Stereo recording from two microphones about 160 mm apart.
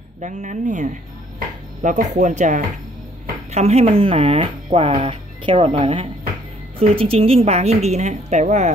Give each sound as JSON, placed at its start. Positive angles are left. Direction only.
{"t": 0.2, "sound": "a woman's voice", "side_deg": -50}